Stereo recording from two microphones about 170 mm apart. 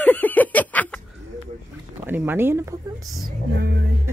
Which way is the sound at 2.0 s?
10° right (ahead or behind).